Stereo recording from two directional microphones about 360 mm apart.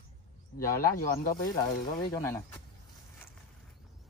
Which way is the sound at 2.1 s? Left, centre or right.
Centre.